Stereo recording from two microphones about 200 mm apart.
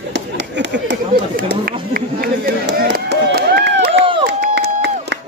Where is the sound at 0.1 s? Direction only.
60° right (ahead or behind).